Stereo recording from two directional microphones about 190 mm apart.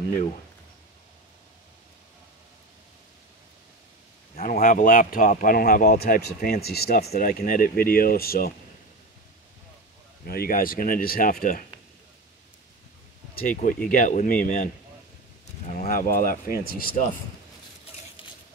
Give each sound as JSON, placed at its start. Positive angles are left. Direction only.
{"t": 4.4, "sound": "speech", "side_deg": 45}
{"t": 10.2, "sound": "speech", "side_deg": 50}
{"t": 13.3, "sound": "speech", "side_deg": 50}
{"t": 15.7, "sound": "speech", "side_deg": 45}